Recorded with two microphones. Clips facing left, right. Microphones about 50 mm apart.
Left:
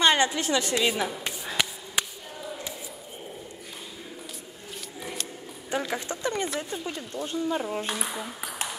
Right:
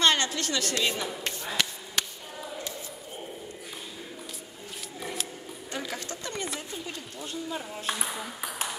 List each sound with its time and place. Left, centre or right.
0.0 s a woman's voice: centre
5.7 s speech: centre
7.8 s speech: centre